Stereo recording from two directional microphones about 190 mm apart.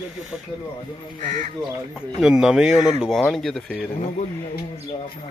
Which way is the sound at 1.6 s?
5° right (ahead or behind).